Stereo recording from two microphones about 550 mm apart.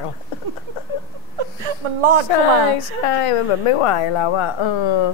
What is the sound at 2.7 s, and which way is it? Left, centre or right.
Speech, left.